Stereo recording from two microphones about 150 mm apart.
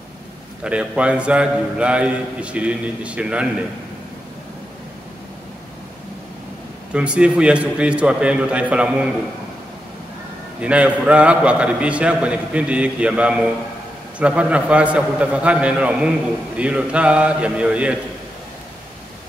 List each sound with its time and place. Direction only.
0.7 s a man's voice: 10° right (ahead or behind)
6.9 s a man's voice: 5° right (ahead or behind)
10.6 s a man's voice: 10° right (ahead or behind)